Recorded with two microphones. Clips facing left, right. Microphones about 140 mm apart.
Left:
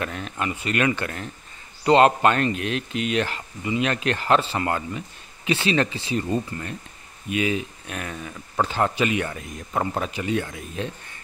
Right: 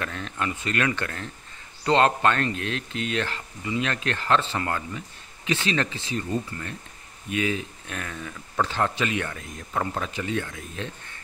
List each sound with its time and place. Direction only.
0.0 s speech: 15° left (ahead or behind)